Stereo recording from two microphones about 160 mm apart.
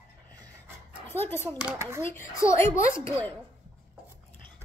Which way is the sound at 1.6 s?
15° right (ahead or behind).